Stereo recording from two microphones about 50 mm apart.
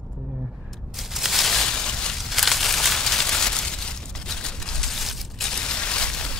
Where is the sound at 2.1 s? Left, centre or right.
Centre.